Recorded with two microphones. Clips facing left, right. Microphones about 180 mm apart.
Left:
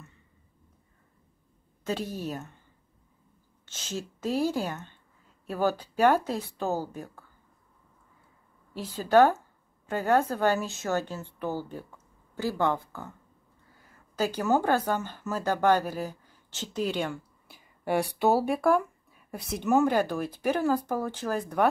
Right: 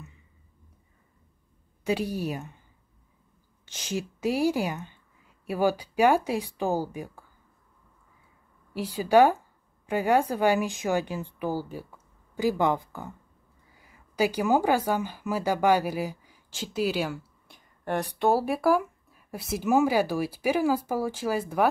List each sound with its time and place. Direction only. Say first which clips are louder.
1.9 s speech: right 4 dB; 10° right (ahead or behind)
3.6 s speech: right 4 dB; 15° right (ahead or behind)
8.7 s speech: right 1 dB; 10° right (ahead or behind)
17.6 s speech: left 2 dB; 10° left (ahead or behind); by 21.6 s 5° right (ahead or behind)